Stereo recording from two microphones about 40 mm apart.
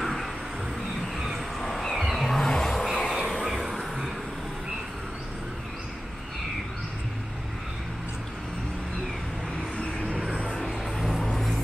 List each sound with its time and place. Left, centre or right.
1.6 s a sound: centre
2.0 s vehicle: centre
9.8 s vehicle: left
10.5 s vehicle: centre